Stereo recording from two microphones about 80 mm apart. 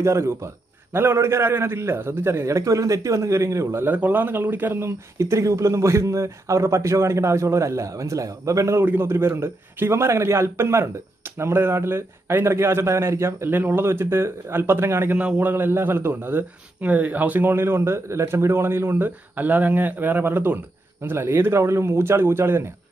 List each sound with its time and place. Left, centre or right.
0.0 s speech: right
3.8 s speech: right
8.8 s speech: right
15.1 s a man's voice: centre